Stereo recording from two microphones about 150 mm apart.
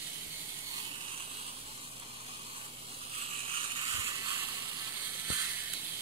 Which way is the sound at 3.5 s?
35° right (ahead or behind).